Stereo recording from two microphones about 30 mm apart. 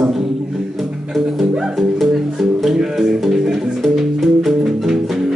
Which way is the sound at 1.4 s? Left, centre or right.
Centre.